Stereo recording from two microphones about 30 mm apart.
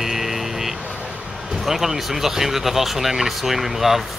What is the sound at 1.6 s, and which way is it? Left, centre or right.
Speech, centre.